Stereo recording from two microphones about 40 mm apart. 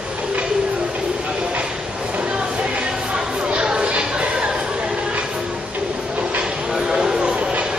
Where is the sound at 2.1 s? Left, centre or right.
Right.